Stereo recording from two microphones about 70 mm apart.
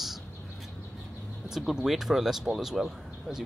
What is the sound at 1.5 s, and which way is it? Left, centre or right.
Speech, centre.